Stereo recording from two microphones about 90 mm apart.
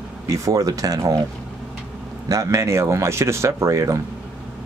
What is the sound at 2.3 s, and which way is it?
Speech, 35° right (ahead or behind).